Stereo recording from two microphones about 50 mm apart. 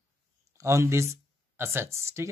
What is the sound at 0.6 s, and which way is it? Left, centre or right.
Speech, right.